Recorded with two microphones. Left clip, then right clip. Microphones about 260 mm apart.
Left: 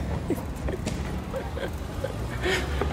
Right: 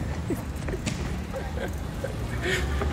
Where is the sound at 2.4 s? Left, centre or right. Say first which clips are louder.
Left 1 dB; centre.